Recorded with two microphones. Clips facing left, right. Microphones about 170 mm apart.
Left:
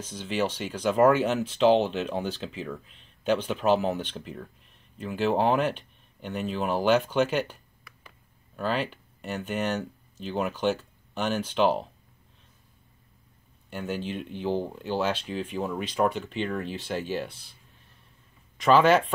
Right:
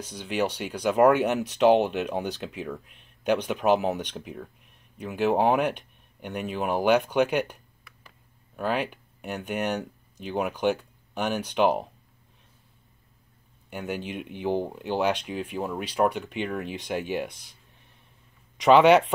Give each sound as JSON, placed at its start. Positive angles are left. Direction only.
{"t": 0.0, "sound": "speech", "side_deg": -15}
{"t": 8.5, "sound": "speech", "side_deg": -15}
{"t": 13.7, "sound": "speech", "side_deg": -15}
{"t": 18.6, "sound": "speech", "side_deg": -20}